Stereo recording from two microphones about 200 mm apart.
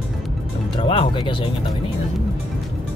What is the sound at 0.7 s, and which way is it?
Speech, 25° left (ahead or behind).